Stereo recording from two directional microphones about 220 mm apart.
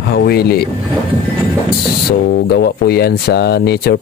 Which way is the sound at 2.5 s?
45° left (ahead or behind).